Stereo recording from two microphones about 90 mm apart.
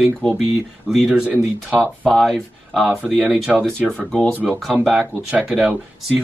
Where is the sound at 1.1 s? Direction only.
15° right (ahead or behind).